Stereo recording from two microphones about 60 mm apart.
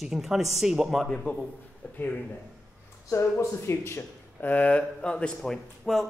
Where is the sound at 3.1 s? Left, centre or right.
Left.